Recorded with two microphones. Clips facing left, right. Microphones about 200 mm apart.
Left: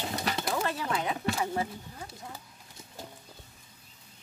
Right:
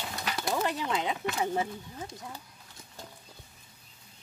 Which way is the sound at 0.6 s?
20° right (ahead or behind).